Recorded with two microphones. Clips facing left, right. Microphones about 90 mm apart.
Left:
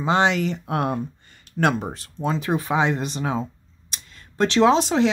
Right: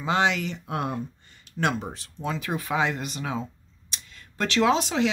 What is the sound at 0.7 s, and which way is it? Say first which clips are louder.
Speech: left 4 dB; 60° left (ahead or behind).